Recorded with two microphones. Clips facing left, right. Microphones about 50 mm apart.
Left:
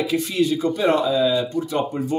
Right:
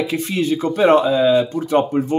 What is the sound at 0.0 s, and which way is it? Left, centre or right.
Speech, right.